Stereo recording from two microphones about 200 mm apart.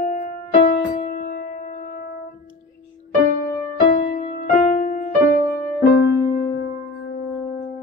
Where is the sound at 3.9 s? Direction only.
40° left (ahead or behind).